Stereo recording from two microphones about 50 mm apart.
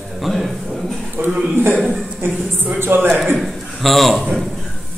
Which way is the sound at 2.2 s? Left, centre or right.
Right.